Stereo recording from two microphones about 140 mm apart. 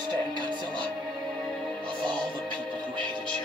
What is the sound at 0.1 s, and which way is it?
Music, 30° right (ahead or behind).